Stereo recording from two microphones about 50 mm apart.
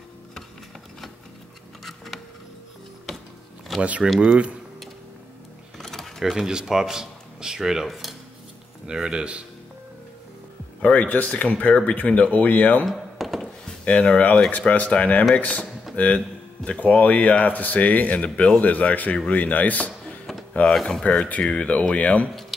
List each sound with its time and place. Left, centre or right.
3.8 s speech: right
5.8 s a sound: centre
6.3 s speech: centre
8.8 s speech: centre
10.8 s speech: left
12.8 s typing: centre
13.9 s a man's voice: left
21.0 s speech: left
22.3 s a sound: centre